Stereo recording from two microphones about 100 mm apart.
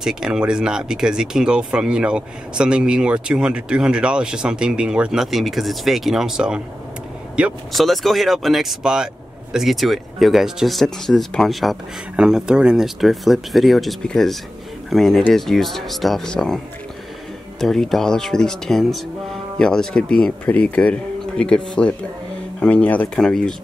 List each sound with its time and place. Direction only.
0.0 s speech: 5° right (ahead or behind)
7.7 s speech: centre (ahead or behind)
17.6 s speech: 5° left (ahead or behind)